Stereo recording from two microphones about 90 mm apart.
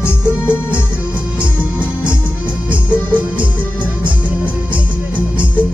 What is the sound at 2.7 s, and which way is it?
Music, 15° right (ahead or behind).